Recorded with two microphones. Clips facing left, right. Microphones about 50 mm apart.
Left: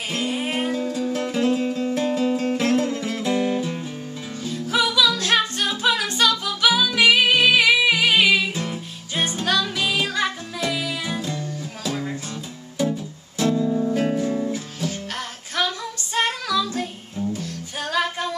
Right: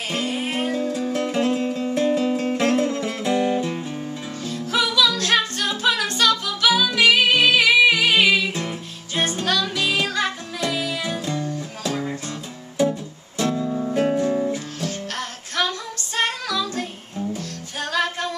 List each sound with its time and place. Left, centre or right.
0.1 s music: centre
4.4 s music: centre
14.5 s music: centre